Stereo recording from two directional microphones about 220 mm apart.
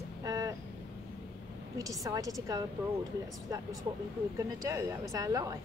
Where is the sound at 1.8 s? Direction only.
15° right (ahead or behind).